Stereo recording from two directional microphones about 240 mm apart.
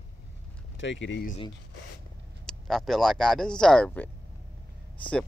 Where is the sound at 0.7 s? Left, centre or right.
Left.